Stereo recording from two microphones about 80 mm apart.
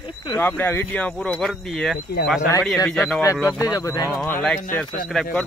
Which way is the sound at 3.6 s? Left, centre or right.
Left.